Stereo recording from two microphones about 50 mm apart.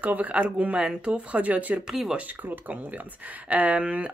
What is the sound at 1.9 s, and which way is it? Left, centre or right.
Speech, centre.